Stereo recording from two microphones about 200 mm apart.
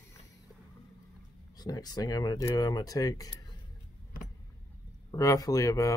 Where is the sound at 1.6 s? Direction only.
20° left (ahead or behind).